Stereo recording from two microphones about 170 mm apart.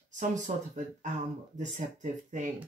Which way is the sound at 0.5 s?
45° right (ahead or behind).